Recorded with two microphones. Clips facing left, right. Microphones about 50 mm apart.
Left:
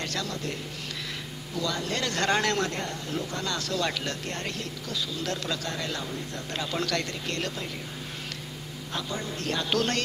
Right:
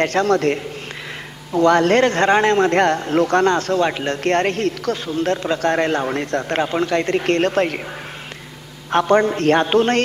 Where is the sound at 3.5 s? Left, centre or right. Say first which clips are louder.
Right 12 dB; right.